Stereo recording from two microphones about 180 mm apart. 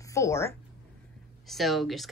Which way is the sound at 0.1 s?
15° left (ahead or behind).